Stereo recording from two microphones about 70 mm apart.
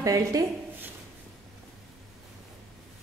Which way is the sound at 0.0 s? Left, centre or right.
Right.